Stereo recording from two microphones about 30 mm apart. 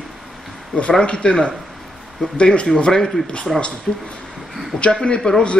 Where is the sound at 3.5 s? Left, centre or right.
Centre.